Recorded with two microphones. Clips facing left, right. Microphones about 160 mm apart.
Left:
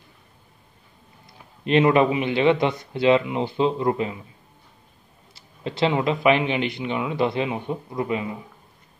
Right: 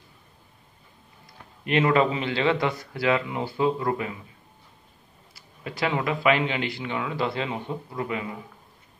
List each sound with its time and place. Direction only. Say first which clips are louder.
1.2 s speech: left 6 dB; 20° left (ahead or behind)
5.3 s speech: left 6 dB; 25° left (ahead or behind)